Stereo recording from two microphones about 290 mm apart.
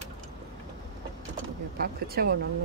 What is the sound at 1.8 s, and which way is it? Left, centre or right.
Speech, right.